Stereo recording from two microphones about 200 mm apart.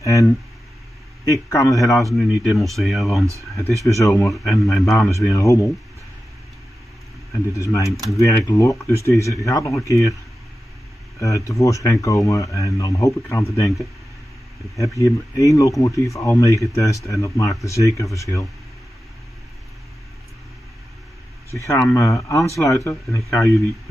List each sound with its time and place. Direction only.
0.0 s speech: 15° left (ahead or behind)
2.0 s speech: centre (ahead or behind)
4.0 s speech: 15° left (ahead or behind)
4.3 s speech: centre (ahead or behind)
5.3 s speech: 15° left (ahead or behind)
7.5 s speech: 15° left (ahead or behind)
11.1 s speech: 15° left (ahead or behind)
15.0 s speech: 15° left (ahead or behind)
21.5 s speech: 10° left (ahead or behind)